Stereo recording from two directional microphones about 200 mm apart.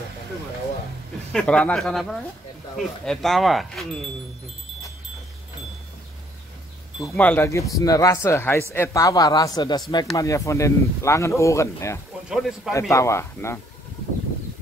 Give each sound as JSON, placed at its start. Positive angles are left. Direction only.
{"t": 1.3, "sound": "speech", "side_deg": 5}
{"t": 7.0, "sound": "speech", "side_deg": 10}
{"t": 12.3, "sound": "speech", "side_deg": 0}
{"t": 12.9, "sound": "speech", "side_deg": 15}